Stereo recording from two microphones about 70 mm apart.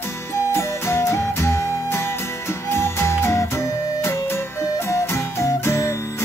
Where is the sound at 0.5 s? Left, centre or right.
Left.